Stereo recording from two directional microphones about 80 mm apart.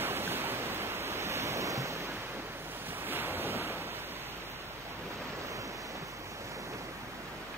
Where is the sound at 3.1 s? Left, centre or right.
Right.